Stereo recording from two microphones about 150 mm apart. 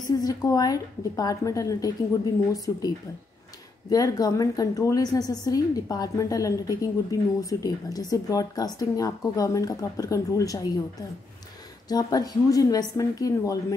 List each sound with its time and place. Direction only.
0.0 s a woman's voice: 25° left (ahead or behind)
3.9 s a woman's voice: 25° left (ahead or behind)
11.9 s a woman's voice: 25° left (ahead or behind)